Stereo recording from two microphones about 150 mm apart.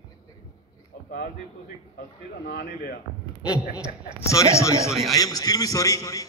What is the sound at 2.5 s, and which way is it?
Speech, 90° left.